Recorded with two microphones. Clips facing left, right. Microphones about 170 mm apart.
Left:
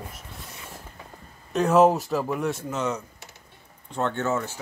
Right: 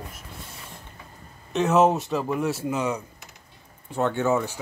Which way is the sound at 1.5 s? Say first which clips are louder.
Left 1 dB; centre (ahead or behind).